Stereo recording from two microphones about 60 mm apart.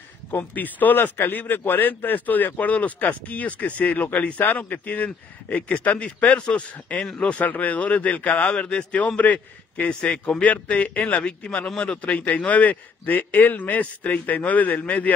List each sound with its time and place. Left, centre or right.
0.3 s a man's voice: left
11.4 s a man's voice: centre; by 15.1 s left